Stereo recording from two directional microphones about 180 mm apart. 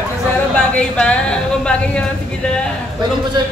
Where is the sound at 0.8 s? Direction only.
5° left (ahead or behind).